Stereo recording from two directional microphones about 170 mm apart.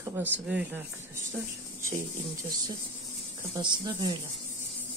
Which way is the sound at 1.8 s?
15° right (ahead or behind).